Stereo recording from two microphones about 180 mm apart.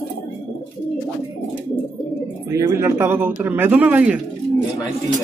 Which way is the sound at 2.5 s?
15° right (ahead or behind).